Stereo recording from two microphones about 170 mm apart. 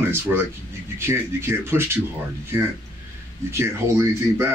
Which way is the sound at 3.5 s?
15° right (ahead or behind).